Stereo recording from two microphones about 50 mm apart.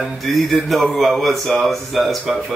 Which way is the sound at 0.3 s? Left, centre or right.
Centre.